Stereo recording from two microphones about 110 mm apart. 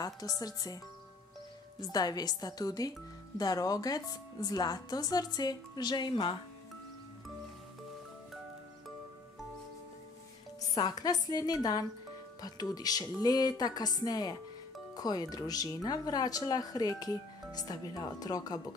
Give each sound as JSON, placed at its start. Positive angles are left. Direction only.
{"t": 0.0, "sound": "speech", "side_deg": 35}
{"t": 1.8, "sound": "speech", "side_deg": 35}
{"t": 10.7, "sound": "speech", "side_deg": 40}